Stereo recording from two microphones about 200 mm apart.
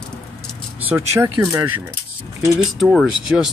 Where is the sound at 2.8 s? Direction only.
Centre (ahead or behind).